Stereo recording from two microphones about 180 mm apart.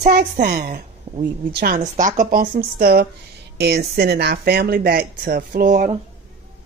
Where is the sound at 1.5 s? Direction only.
55° right (ahead or behind).